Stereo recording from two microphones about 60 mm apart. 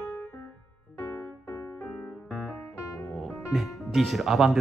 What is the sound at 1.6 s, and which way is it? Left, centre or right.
Music, left.